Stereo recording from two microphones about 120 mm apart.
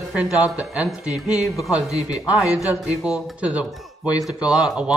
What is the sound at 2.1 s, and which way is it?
A woman's voice, 10° right (ahead or behind).